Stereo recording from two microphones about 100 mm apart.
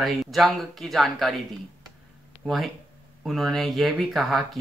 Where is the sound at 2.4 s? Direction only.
Centre (ahead or behind).